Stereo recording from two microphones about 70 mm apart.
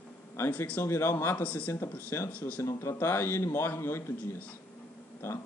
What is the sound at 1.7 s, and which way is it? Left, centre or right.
Speech, left.